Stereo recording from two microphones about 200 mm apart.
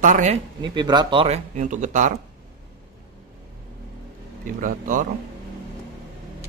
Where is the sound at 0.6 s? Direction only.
20° right (ahead or behind); by 2.1 s 40° right (ahead or behind).